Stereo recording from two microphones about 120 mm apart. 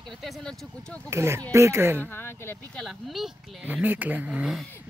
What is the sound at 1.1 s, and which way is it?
Speech, 25° right (ahead or behind).